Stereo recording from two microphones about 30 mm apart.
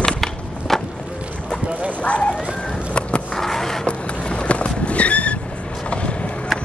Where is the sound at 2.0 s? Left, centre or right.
Left.